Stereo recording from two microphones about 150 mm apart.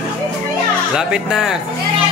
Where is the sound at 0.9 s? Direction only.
5° right (ahead or behind).